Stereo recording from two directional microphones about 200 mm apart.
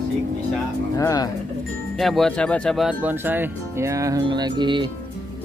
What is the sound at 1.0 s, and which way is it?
Speech, 15° left (ahead or behind).